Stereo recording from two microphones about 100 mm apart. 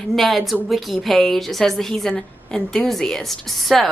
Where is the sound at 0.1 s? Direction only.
Centre (ahead or behind).